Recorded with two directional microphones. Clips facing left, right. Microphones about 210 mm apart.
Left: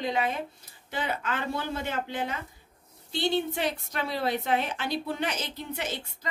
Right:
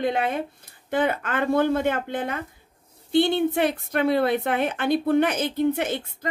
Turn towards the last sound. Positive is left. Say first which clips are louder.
# right 11 dB
turn(degrees=-55)  # may be behind; listen again after turning